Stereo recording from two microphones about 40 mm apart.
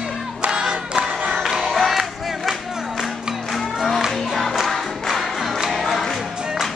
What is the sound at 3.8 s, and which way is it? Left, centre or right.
Music, centre.